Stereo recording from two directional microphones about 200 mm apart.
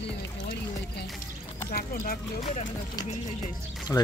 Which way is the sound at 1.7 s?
45° left (ahead or behind).